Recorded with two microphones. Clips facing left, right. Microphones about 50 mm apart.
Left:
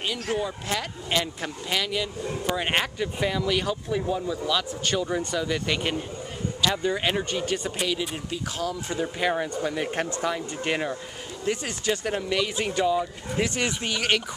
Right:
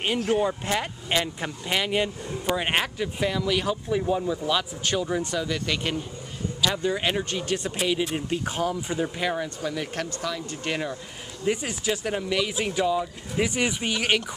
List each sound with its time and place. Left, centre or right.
0.3 s speech: right
0.7 s speech: centre
2.5 s speech: centre
4.8 s speech: centre
8.3 s speech: right
9.2 s speech: centre
10.5 s speech: centre
11.4 s speech: centre
13.4 s speech: centre